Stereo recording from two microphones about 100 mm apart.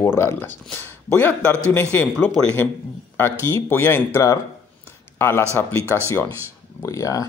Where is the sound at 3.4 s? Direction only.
25° left (ahead or behind).